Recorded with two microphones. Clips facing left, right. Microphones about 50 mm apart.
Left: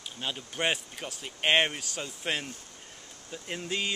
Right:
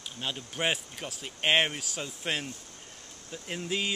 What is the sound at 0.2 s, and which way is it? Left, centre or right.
Speech, centre.